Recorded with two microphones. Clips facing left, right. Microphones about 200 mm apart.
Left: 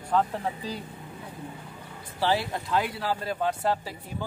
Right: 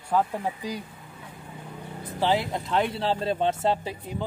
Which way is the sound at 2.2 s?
20° right (ahead or behind).